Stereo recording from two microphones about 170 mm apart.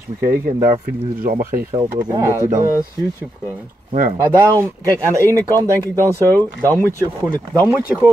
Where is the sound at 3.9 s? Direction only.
40° right (ahead or behind).